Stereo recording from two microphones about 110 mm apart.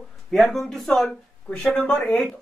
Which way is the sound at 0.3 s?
Centre (ahead or behind).